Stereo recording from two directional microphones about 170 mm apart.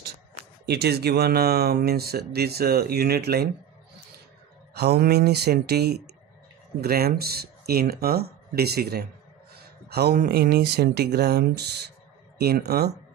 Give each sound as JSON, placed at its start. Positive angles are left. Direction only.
{"t": 0.7, "sound": "speech", "side_deg": -70}
{"t": 4.7, "sound": "speech", "side_deg": -70}